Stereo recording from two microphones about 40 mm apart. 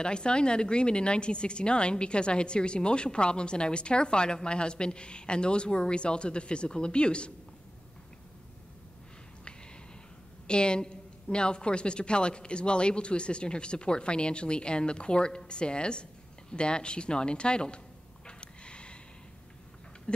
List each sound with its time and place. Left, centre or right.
0.0 s a woman's voice: left
10.4 s a woman's voice: left
18.2 s a sound: left